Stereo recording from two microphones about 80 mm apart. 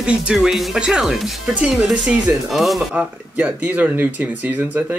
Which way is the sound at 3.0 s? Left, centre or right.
Centre.